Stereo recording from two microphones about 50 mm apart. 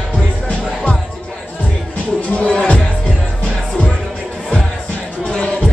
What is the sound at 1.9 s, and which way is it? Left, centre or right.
Music, left.